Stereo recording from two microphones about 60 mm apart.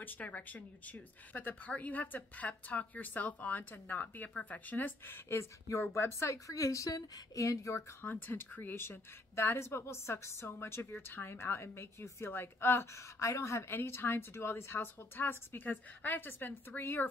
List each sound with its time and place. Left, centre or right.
0.0 s speech: left
5.4 s speech: left
6.4 s speech: left
8.0 s a woman's voice: left